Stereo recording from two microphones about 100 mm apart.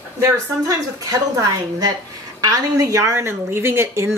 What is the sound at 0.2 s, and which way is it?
A woman's voice, 35° right (ahead or behind).